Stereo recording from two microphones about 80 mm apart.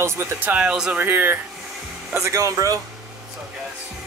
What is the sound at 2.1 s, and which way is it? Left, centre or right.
Speech, right.